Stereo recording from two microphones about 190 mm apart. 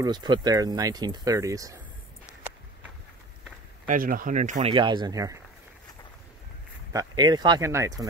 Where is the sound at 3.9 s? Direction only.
45° right (ahead or behind).